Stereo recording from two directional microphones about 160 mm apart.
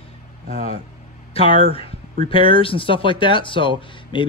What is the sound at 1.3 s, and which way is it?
A man's voice, 35° left (ahead or behind).